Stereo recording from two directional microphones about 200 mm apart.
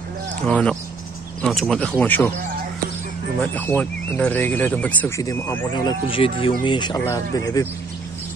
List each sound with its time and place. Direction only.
0.5 s speech: 5° left (ahead or behind)
3.5 s speech: 10° left (ahead or behind)
5.7 s speech: 25° left (ahead or behind)